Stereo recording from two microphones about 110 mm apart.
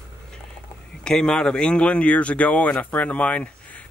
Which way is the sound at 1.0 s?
5° left (ahead or behind).